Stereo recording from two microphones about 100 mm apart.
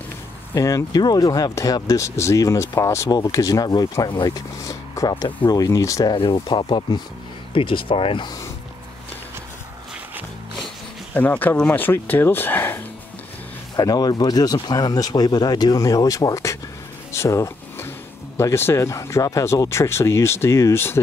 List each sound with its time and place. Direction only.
0.6 s speech: 35° left (ahead or behind)
4.6 s a sound: 30° left (ahead or behind)
5.2 s speech: 40° left (ahead or behind)
6.1 s speech: 55° left (ahead or behind)
11.1 s speech: 15° left (ahead or behind)
13.7 s speech: 45° left (ahead or behind)
17.1 s a sound: 30° left (ahead or behind)
18.4 s speech: 25° left (ahead or behind)